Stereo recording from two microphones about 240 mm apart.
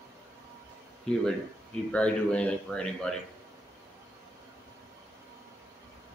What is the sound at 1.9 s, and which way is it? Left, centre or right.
Speech, centre.